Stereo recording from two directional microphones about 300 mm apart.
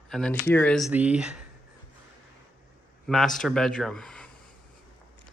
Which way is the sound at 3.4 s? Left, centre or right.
Centre.